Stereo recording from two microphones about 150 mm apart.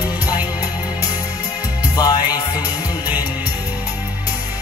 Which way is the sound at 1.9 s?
25° left (ahead or behind).